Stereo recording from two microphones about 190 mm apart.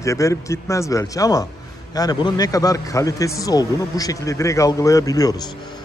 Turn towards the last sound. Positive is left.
turn(degrees=20)  # may be behind; listen again after turning